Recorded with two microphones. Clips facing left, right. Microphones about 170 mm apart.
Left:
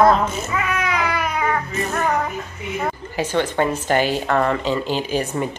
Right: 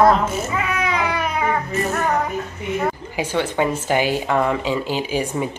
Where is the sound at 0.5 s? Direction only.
20° right (ahead or behind).